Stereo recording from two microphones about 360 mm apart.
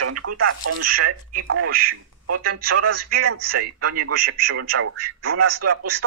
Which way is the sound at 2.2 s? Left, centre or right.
Right.